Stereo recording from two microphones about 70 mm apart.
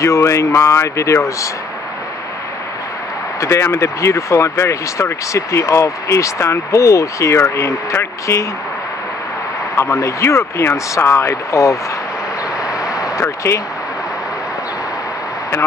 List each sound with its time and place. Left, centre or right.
0.0 s speech: left
3.3 s speech: left
9.8 s speech: left
12.6 s a sound: left